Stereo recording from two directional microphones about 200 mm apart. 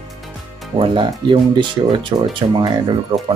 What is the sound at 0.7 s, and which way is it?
Speech, 25° right (ahead or behind).